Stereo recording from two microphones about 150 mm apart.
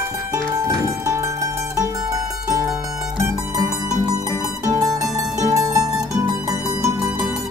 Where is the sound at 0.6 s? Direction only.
20° right (ahead or behind).